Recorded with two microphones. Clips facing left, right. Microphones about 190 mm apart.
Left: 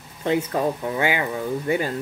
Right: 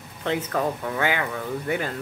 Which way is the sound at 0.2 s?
10° left (ahead or behind).